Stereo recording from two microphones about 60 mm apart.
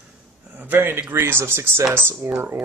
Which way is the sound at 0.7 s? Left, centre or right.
Right.